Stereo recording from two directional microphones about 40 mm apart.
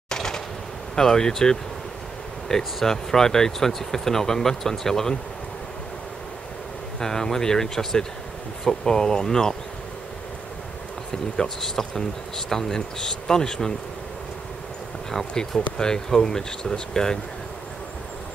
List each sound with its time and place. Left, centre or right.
0.1 s a sound: centre
0.9 s speech: centre
7.0 s speech: centre
11.3 s speech: centre
15.0 s speech: centre